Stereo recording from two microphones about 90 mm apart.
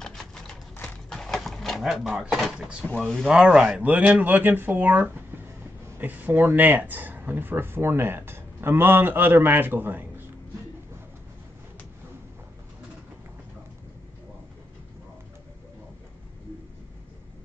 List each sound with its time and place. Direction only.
0.0 s typewriter: 5° left (ahead or behind)
1.1 s drawer open or close: 5° left (ahead or behind)
3.0 s speech: 5° left (ahead or behind)
3.3 s speech: 5° right (ahead or behind)